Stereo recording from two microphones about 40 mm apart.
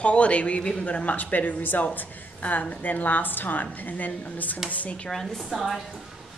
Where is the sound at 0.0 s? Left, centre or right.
Left.